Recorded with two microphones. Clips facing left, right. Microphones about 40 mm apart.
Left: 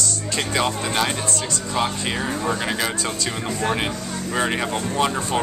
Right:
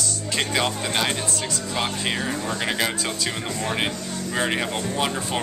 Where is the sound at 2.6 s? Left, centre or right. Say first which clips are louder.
Even; centre.